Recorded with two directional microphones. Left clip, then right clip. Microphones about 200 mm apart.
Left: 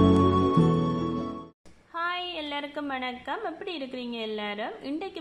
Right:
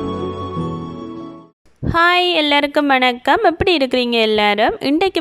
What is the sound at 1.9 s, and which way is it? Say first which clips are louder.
A woman's voice: right 18 dB; 50° right (ahead or behind).